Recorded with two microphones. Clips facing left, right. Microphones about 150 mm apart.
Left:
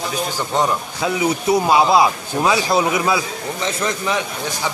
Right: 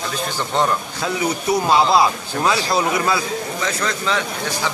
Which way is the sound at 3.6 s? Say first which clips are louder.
Left 5 dB; 20° left (ahead or behind).